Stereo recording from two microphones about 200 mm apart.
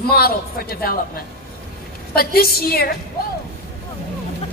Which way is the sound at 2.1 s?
50° left (ahead or behind).